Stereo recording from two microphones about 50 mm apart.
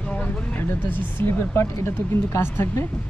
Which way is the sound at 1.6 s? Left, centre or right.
Left.